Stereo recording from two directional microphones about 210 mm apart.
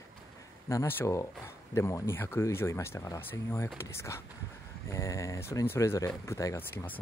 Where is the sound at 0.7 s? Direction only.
15° left (ahead or behind).